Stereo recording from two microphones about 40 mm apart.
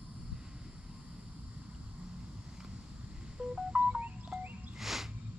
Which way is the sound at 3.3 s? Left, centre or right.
Centre.